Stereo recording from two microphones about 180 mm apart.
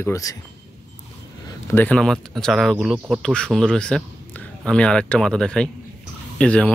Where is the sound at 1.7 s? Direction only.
10° left (ahead or behind).